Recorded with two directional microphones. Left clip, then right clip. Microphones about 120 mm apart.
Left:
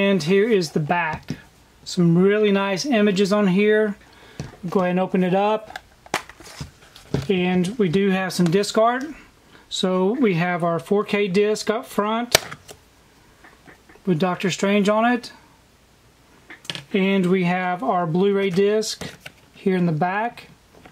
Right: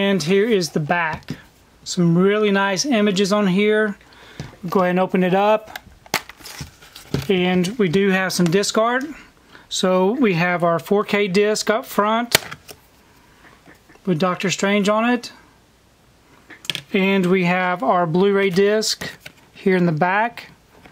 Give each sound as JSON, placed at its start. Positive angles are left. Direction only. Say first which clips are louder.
{"t": 0.0, "sound": "speech", "louder": "right 1 dB", "side_deg": -35}
{"t": 5.7, "sound": "a sound", "louder": "right 2 dB", "side_deg": -10}
{"t": 7.2, "sound": "speech", "louder": "right 3 dB", "side_deg": -35}
{"t": 12.3, "sound": "a sound", "louder": "even", "side_deg": -5}
{"t": 14.0, "sound": "speech", "louder": "right 2 dB", "side_deg": -35}
{"t": 16.9, "sound": "speech", "louder": "right 2 dB", "side_deg": -40}